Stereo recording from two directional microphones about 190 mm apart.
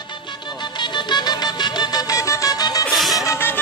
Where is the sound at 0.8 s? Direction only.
25° left (ahead or behind).